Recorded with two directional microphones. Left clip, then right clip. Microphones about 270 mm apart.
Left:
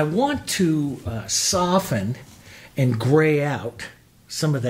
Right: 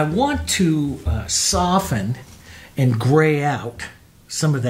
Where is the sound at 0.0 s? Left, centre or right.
Left.